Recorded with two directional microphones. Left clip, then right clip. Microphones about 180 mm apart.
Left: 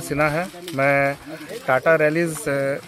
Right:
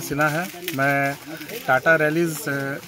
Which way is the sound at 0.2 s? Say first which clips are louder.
Left 1 dB; 25° left (ahead or behind).